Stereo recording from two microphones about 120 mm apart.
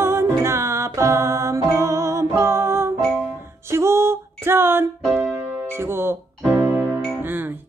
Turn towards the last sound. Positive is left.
turn(degrees=-15)  # may be behind; listen again after turning